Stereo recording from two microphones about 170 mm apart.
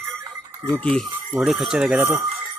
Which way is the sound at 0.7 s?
5° left (ahead or behind).